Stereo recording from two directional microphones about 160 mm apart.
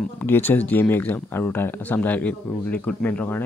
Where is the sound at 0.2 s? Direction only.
10° left (ahead or behind).